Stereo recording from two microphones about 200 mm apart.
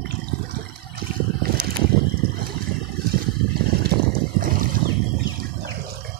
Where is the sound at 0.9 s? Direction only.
50° right (ahead or behind).